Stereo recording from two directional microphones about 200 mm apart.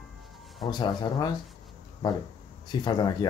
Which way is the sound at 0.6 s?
20° left (ahead or behind).